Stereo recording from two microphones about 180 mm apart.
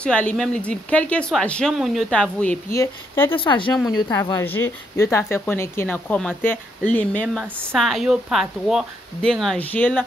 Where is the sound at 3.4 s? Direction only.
30° left (ahead or behind); by 7.5 s 5° left (ahead or behind).